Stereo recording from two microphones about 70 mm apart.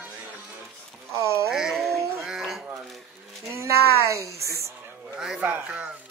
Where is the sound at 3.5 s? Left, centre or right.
Right.